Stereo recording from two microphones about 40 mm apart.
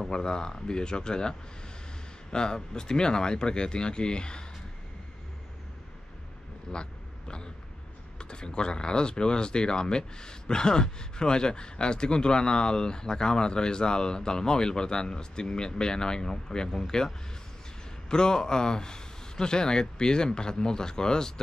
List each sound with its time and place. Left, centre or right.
0.1 s speech: centre
2.3 s speech: centre
6.7 s a sound: left
8.2 s speech: left
18.1 s speech: centre